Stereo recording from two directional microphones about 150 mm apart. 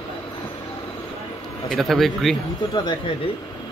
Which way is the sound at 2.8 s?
30° left (ahead or behind).